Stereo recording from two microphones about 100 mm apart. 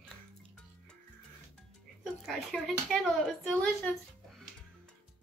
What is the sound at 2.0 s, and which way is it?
Speech, centre (ahead or behind).